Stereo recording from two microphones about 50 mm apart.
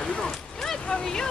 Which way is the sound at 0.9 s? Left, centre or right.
Centre.